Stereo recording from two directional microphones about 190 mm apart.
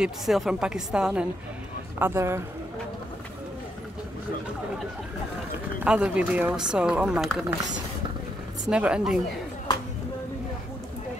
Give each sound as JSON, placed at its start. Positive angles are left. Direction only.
{"t": 0.0, "sound": "a man's voice", "side_deg": 0}
{"t": 5.9, "sound": "speech", "side_deg": -5}
{"t": 8.6, "sound": "speech", "side_deg": -5}